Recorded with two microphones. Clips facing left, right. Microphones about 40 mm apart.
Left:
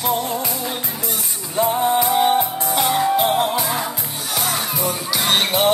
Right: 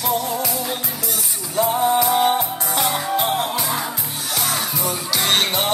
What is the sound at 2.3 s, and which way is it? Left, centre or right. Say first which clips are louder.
Music: left 3 dB; centre.